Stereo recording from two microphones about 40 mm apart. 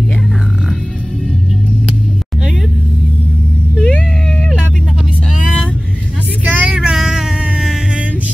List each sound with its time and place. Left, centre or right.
3.7 s cat: left
6.4 s a sound: right
6.7 s child singing: centre